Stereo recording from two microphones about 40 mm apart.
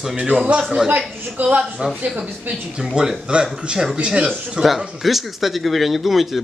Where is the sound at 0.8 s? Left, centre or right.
Right.